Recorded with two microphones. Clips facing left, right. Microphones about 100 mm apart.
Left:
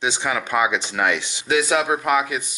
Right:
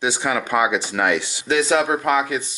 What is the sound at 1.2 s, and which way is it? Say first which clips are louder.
Speech: right 1 dB; 15° left (ahead or behind).